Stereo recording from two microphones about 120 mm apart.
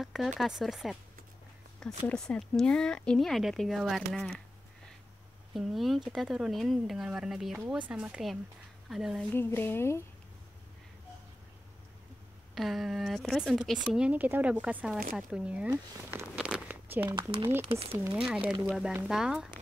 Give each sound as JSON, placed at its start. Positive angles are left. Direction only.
{"t": 0.0, "sound": "chop", "side_deg": 0}
{"t": 0.4, "sound": "speech", "side_deg": -5}
{"t": 5.5, "sound": "a woman's voice", "side_deg": 0}
{"t": 9.3, "sound": "speech", "side_deg": 20}
{"t": 12.5, "sound": "speech", "side_deg": 0}
{"t": 16.4, "sound": "a sound", "side_deg": -10}
{"t": 17.6, "sound": "speech", "side_deg": -55}
{"t": 18.1, "sound": "speech", "side_deg": -5}